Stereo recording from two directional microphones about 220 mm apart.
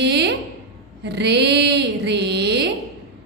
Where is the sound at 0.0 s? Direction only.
50° right (ahead or behind).